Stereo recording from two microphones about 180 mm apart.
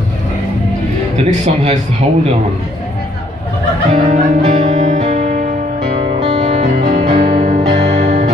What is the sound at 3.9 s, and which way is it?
Music, 40° right (ahead or behind).